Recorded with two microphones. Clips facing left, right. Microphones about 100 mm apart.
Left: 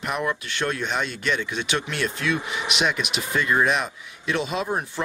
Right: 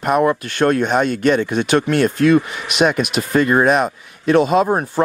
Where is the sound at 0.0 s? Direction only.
45° right (ahead or behind).